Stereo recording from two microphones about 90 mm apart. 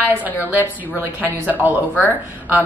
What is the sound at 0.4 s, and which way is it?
A woman's voice, 20° right (ahead or behind).